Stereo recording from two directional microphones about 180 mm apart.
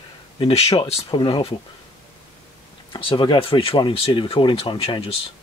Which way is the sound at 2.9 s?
30° left (ahead or behind).